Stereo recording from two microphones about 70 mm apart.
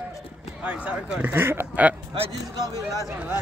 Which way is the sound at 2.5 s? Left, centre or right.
Right.